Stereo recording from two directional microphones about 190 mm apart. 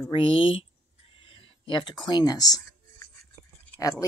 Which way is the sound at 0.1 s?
30° left (ahead or behind).